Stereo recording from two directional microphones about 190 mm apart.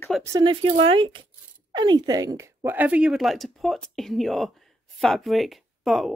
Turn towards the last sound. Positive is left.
turn(degrees=0)  # may be behind; listen again after turning